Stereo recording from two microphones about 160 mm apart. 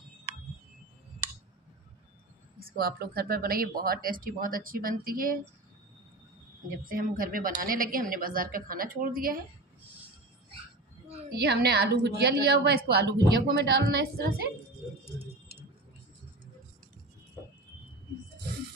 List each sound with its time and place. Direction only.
2.6 s speech: 75° right (ahead or behind)
6.8 s speech: 60° right (ahead or behind)
11.3 s a woman's voice: 90° right